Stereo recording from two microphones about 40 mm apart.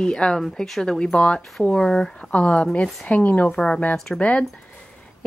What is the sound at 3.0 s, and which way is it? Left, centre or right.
Speech, left.